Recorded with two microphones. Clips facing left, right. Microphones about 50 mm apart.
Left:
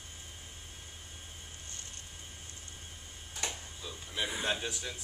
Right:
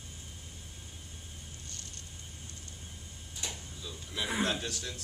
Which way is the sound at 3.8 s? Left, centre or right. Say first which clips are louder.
Left 1 dB; centre.